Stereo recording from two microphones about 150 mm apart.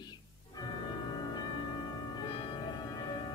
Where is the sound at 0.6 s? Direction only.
30° left (ahead or behind).